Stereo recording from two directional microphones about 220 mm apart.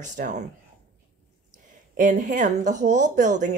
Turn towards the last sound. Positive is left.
turn(degrees=-35)  # may be behind; listen again after turning